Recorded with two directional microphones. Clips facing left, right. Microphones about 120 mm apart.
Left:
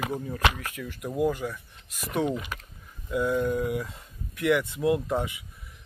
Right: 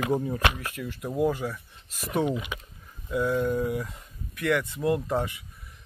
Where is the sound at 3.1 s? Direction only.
Centre (ahead or behind).